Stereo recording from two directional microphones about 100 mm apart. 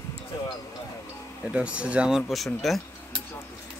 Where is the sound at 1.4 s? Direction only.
10° right (ahead or behind).